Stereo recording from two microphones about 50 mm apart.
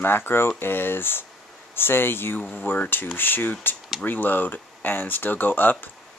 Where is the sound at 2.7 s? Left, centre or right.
Left.